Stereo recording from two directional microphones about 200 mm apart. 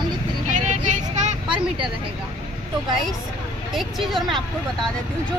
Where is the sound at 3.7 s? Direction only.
Centre (ahead or behind).